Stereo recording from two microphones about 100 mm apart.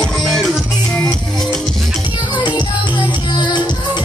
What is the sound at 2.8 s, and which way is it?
Music, 50° left (ahead or behind).